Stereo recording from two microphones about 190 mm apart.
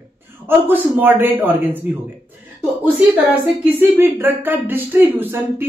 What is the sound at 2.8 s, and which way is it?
A man's voice, 10° right (ahead or behind).